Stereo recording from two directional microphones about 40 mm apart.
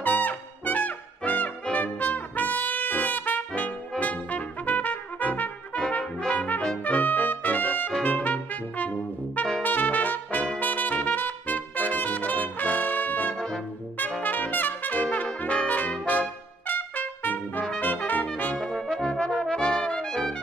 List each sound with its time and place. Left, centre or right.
0.0 s brass instrument: left
4.0 s trumpet: left
5.8 s brass instrument: left
6.3 s brass instrument: left
9.6 s trumpet: left
14.2 s brass instrument: left
16.1 s trumpet: left
18.6 s brass instrument: centre